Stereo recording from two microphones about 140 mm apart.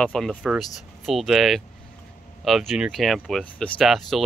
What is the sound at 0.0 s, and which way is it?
Speech, 5° left (ahead or behind).